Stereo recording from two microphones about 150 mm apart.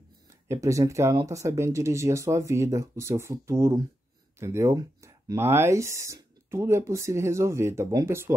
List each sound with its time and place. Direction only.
0.5 s speech: 20° right (ahead or behind)